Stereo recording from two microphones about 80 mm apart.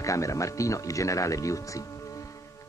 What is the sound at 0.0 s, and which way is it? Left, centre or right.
Speech, left.